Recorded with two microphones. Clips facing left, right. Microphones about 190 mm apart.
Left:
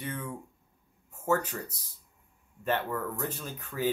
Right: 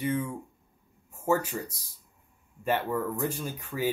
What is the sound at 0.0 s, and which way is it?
Speech, 10° right (ahead or behind).